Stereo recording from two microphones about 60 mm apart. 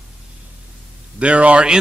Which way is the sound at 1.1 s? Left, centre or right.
Centre.